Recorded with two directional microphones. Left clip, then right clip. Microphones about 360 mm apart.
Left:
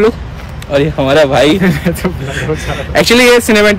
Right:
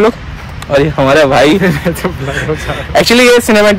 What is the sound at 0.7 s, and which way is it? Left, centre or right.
Speech, centre.